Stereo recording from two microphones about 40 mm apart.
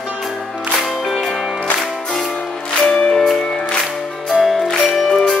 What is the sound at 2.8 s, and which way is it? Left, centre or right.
Music, left.